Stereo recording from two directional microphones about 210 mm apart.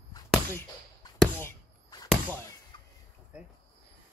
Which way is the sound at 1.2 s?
10° left (ahead or behind).